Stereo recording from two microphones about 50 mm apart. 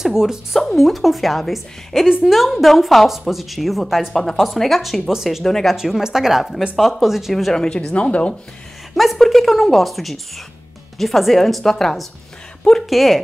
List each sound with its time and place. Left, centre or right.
0.0 s speech: centre
0.6 s a woman's voice: centre
5.4 s speech: centre
5.7 s a woman's voice: centre
7.5 s speech: centre
8.9 s a woman's voice: centre